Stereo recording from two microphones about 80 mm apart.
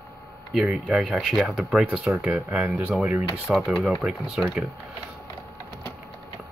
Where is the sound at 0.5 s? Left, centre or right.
Centre.